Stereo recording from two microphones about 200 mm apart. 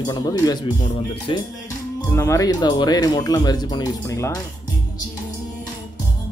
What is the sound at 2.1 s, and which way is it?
Speech, 15° left (ahead or behind).